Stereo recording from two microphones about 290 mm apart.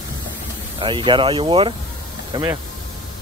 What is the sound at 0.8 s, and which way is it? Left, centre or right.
Speech, centre.